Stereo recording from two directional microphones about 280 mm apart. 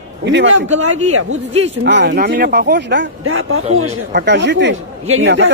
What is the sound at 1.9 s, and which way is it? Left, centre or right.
Speech, right.